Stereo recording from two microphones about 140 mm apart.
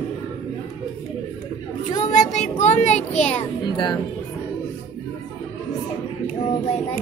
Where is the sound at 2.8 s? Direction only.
55° left (ahead or behind).